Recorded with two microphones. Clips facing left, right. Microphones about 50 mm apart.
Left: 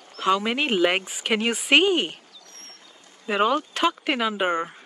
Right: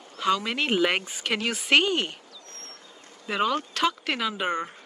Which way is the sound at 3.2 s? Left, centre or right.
Left.